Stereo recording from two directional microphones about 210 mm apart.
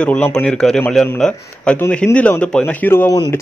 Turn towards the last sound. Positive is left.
turn(degrees=15)  # may be behind; listen again after turning